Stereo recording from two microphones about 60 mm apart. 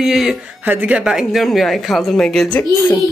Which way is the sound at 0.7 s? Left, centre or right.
Right.